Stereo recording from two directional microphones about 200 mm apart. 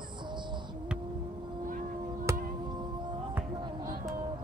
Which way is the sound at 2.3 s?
15° right (ahead or behind).